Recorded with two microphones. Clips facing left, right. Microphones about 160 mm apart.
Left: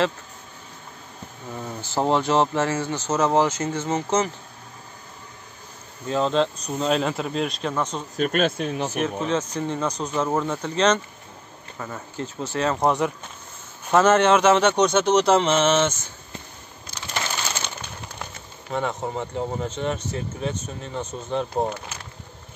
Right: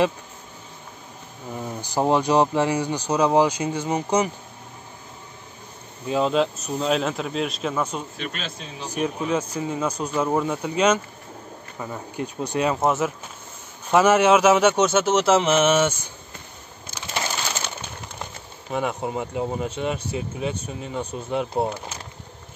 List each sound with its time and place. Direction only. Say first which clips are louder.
1.5 s speech: right 1 dB; 10° right (ahead or behind)
6.0 s speech: right 1 dB; 10° right (ahead or behind)
8.2 s speech: left 11 dB; 50° left (ahead or behind)
8.9 s speech: right 4 dB; 15° right (ahead or behind)
18.7 s speech: right 1 dB; 10° right (ahead or behind)